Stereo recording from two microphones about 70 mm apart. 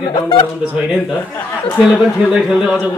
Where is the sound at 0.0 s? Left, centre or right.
Left.